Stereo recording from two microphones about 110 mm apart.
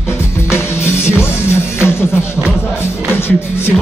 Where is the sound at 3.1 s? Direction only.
20° left (ahead or behind).